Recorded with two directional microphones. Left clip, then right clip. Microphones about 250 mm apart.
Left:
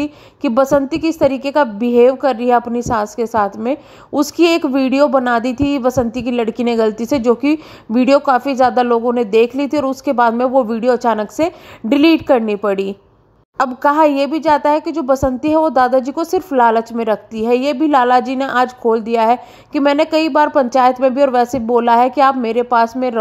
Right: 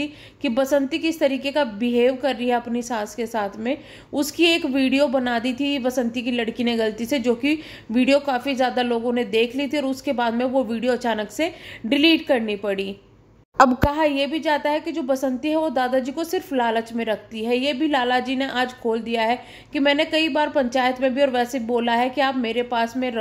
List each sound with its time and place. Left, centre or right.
0.0 s a woman's voice: centre
13.6 s a woman's voice: centre
13.8 s a woman's voice: left